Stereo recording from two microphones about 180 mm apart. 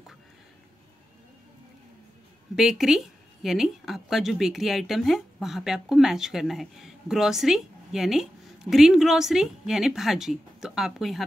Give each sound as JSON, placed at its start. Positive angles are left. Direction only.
{"t": 2.5, "sound": "speech", "side_deg": 0}